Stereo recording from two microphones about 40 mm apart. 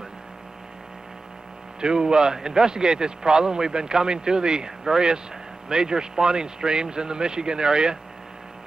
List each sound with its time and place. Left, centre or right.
1.8 s a man's voice: right